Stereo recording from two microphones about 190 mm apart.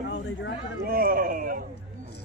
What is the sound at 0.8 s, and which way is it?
Speech, 50° right (ahead or behind).